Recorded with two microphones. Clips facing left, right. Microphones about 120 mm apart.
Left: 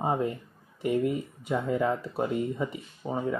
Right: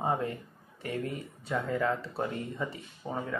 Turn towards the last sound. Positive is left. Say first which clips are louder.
# left 5 dB
turn(degrees=15)  # may be behind; listen again after turning